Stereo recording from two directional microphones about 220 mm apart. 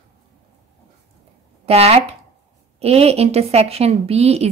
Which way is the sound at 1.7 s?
30° right (ahead or behind).